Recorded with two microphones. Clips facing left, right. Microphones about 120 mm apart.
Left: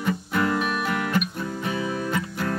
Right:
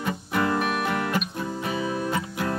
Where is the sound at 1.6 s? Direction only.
15° right (ahead or behind).